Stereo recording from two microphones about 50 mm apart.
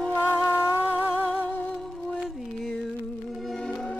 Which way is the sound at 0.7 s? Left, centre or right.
Right.